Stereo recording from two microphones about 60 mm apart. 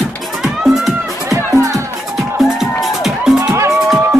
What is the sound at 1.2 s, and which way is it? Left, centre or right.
Music, right.